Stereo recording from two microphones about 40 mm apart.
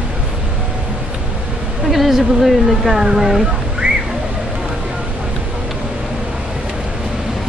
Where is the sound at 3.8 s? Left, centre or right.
Right.